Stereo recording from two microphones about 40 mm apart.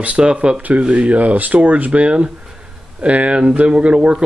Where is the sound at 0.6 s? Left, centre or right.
Right.